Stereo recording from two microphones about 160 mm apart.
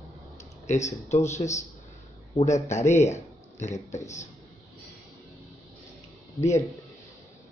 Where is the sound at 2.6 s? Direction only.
45° left (ahead or behind).